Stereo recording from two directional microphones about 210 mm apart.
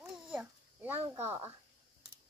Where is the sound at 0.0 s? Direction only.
5° right (ahead or behind).